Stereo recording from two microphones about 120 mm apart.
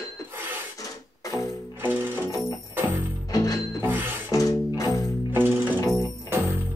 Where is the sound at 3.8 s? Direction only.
15° right (ahead or behind).